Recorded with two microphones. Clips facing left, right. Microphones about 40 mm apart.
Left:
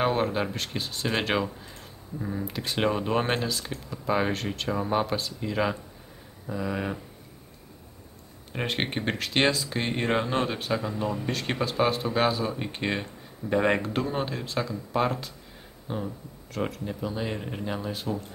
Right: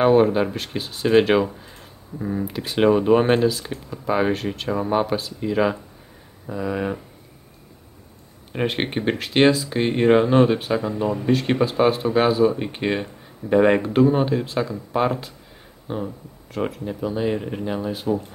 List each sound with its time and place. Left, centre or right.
0.0 s speech: centre
8.5 s speech: centre